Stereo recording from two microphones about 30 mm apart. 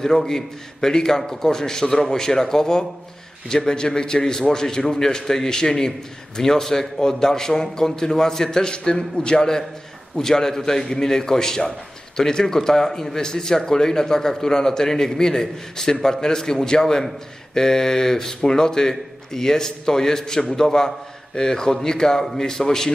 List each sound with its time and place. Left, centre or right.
0.0 s a man's voice: centre